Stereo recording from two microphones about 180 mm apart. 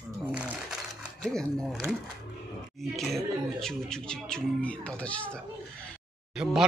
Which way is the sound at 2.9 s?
Centre (ahead or behind).